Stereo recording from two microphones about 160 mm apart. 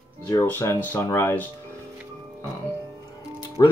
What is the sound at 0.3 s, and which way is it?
Speech, 15° left (ahead or behind).